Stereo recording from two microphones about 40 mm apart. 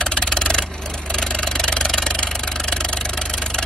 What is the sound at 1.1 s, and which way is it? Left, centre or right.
Vehicle, left.